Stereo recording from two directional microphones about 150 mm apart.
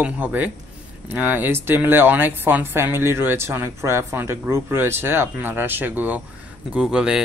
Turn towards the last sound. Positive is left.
turn(degrees=-5)  # may be behind; listen again after turning